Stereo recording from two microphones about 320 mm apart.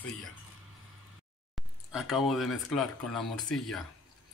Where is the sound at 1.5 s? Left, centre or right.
Centre.